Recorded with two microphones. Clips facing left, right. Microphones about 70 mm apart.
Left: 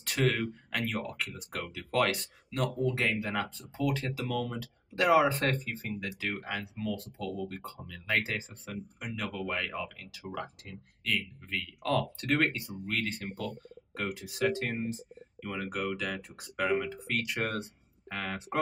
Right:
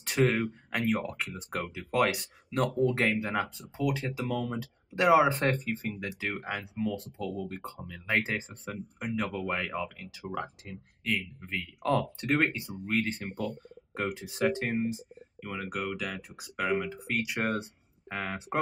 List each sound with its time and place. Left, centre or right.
0.0 s speech: right
2.8 s speech: right
3.3 s speech: centre
14.8 s speech: centre